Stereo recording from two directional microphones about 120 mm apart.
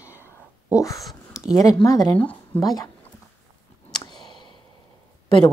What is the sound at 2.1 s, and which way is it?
Speech, 10° left (ahead or behind).